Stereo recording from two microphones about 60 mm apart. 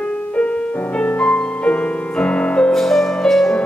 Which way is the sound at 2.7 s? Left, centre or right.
Centre.